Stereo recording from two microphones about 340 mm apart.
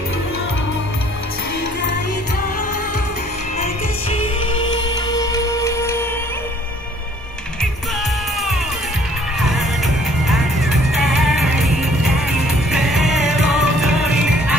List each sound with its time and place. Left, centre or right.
3.5 s music: centre
10.2 s music: centre